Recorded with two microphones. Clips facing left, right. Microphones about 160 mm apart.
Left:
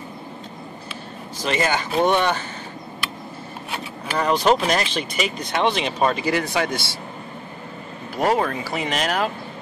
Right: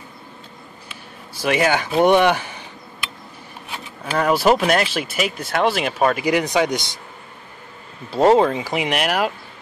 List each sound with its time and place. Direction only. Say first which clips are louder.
1.4 s speech: right 4 dB; 10° right (ahead or behind)
4.2 s speech: right 2 dB; 5° right (ahead or behind)
8.1 s speech: right 6 dB; 25° right (ahead or behind); by 9.3 s 10° right (ahead or behind)